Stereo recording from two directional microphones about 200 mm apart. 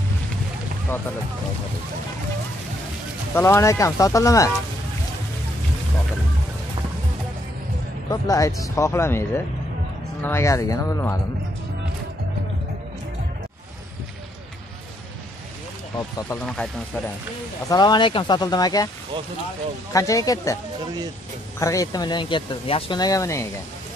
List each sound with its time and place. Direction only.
3.3 s speech: 15° left (ahead or behind)
8.1 s speech: 15° left (ahead or behind)
16.0 s speech: 15° left (ahead or behind)
17.6 s speech: 20° left (ahead or behind)
19.9 s speech: 15° left (ahead or behind)
21.5 s speech: 15° left (ahead or behind)